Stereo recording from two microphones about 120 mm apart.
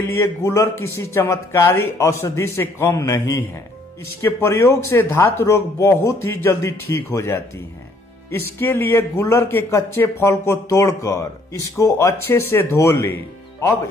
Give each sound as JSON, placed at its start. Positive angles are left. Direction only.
{"t": 0.1, "sound": "speech", "side_deg": 25}